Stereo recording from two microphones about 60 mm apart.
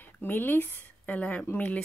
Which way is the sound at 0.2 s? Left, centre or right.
Left.